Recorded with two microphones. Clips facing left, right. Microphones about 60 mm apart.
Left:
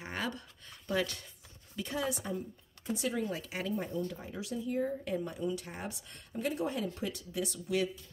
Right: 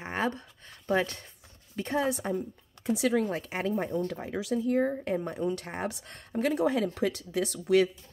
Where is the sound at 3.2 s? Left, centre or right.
Right.